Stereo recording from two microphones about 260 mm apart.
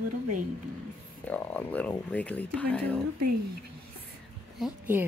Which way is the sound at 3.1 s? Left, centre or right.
Right.